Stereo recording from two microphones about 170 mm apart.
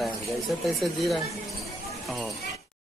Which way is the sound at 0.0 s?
Centre (ahead or behind).